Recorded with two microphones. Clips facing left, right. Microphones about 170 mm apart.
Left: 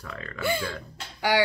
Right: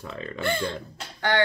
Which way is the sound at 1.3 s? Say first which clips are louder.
Even; 10° left (ahead or behind).